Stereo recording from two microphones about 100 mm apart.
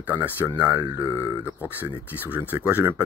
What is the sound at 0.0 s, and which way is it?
Speech, 20° right (ahead or behind).